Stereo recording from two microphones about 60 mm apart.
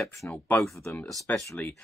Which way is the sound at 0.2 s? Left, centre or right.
Left.